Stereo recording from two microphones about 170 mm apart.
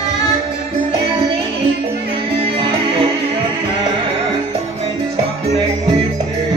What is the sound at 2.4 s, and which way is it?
Music, 30° right (ahead or behind).